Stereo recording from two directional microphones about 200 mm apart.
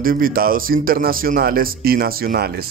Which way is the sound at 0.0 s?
45° right (ahead or behind).